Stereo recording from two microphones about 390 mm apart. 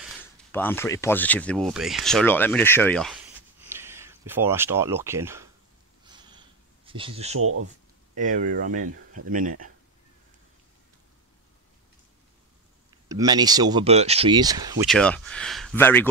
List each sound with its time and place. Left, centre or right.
0.0 s speech: centre
6.0 s a sound: centre
6.9 s speech: centre
7.3 s a sound: right
8.2 s speech: centre
13.1 s speech: centre